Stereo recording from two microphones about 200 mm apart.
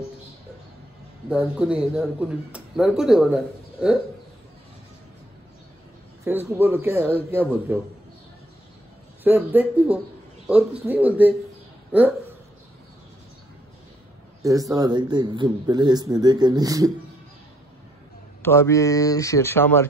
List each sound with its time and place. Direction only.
1.3 s speech: 5° right (ahead or behind)
6.2 s speech: 10° right (ahead or behind)
9.2 s speech: 10° right (ahead or behind)
14.4 s a man's voice: 15° right (ahead or behind)
18.4 s speech: 10° left (ahead or behind)